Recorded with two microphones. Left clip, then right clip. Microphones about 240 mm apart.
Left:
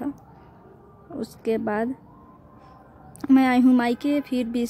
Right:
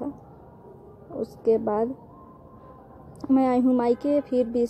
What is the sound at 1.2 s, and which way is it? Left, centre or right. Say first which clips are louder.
Speech: right 3 dB; left.